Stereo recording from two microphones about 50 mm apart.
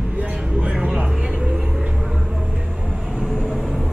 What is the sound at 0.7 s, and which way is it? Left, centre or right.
Vehicle, right.